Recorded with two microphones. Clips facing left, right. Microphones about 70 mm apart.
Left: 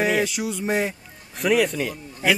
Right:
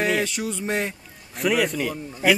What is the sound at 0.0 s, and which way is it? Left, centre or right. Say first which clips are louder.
Speech: left 1 dB; centre.